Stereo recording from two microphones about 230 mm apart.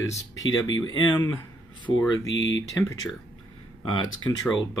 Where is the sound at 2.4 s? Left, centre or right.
Left.